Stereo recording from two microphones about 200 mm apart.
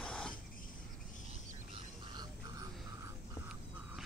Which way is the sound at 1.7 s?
20° right (ahead or behind).